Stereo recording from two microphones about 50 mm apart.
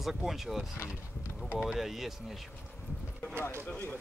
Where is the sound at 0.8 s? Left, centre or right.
Left.